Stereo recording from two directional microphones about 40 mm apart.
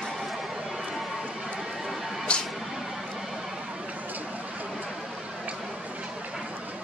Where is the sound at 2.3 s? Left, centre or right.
Left.